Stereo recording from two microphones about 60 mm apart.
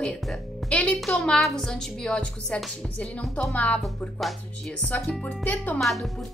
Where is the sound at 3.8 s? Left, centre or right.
Centre.